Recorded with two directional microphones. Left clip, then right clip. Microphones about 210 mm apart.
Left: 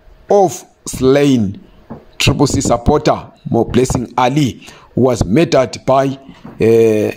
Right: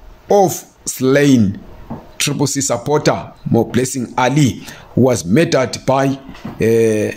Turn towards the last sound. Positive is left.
turn(degrees=25)  # may be behind; listen again after turning